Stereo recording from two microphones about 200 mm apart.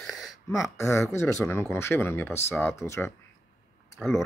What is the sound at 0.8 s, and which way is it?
Speech, 15° left (ahead or behind).